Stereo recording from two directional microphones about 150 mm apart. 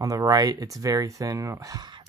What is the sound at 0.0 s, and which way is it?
Speech, 25° right (ahead or behind).